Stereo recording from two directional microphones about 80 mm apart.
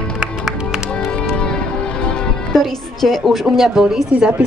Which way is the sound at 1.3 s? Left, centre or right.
Centre.